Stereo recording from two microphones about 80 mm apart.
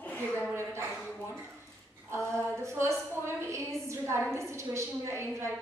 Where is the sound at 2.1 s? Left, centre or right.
Right.